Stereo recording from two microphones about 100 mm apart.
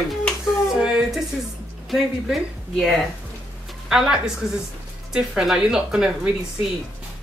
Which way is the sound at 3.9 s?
5° right (ahead or behind).